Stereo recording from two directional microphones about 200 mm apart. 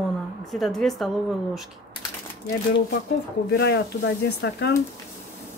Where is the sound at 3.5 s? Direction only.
55° left (ahead or behind).